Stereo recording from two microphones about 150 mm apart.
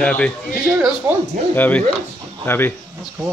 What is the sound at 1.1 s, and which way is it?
Speech, 20° right (ahead or behind).